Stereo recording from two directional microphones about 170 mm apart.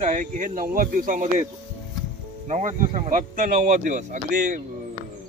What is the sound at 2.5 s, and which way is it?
Speech, 45° right (ahead or behind).